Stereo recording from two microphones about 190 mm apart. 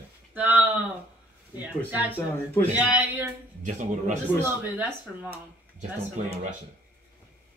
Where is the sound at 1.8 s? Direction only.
10° right (ahead or behind).